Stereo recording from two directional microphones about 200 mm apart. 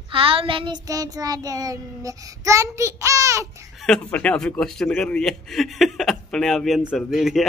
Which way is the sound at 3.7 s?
5° left (ahead or behind).